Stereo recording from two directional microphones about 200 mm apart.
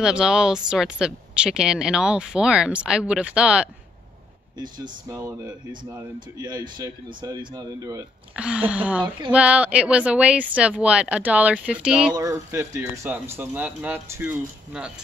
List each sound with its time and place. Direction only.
0.0 s speech: 5° right (ahead or behind)
4.6 s speech: 20° right (ahead or behind)
8.4 s speech: 5° right (ahead or behind)
12.2 s speech: 15° right (ahead or behind)